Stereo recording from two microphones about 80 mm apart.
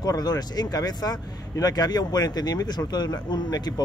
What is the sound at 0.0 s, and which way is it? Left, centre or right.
Speech, left.